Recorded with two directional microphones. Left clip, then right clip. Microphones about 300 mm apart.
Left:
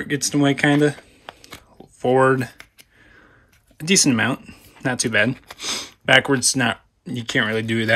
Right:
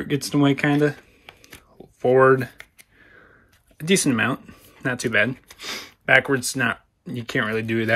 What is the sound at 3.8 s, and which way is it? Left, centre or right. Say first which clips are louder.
Speech: left 2 dB; centre.